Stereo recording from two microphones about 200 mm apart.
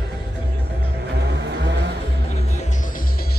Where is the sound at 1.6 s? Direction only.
60° right (ahead or behind).